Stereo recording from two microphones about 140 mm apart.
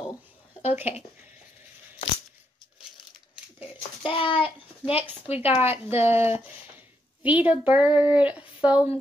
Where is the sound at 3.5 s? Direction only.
40° left (ahead or behind).